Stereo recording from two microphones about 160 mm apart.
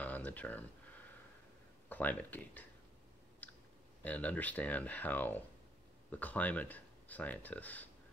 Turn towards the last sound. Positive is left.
turn(degrees=10)  # may be behind; listen again after turning